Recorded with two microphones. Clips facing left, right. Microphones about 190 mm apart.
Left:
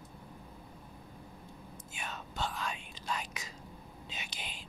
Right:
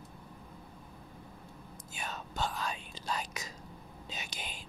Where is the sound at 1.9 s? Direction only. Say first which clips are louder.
Right 3 dB; 40° right (ahead or behind).